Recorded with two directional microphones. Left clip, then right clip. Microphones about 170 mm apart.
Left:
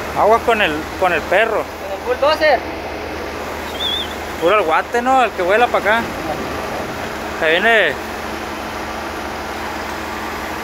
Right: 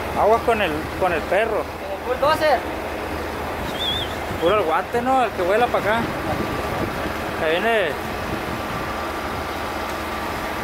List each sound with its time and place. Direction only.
0.2 s speech: centre (ahead or behind)
2.2 s speech: 15° left (ahead or behind)
4.5 s speech: 5° right (ahead or behind)
7.4 s speech: centre (ahead or behind)